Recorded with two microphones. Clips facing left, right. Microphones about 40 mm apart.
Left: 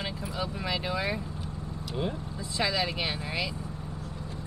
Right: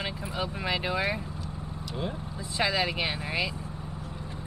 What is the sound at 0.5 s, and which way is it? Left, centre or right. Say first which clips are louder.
Speech: right 3 dB; right.